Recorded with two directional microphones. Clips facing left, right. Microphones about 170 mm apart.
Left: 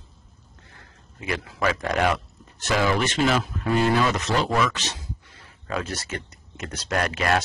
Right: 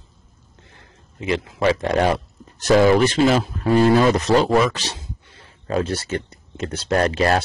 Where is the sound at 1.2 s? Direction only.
25° right (ahead or behind).